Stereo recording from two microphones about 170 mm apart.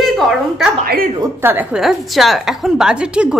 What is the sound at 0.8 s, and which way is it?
Speech, 60° right (ahead or behind).